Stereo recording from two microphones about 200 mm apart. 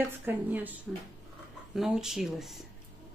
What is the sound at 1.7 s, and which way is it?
Speech, centre (ahead or behind).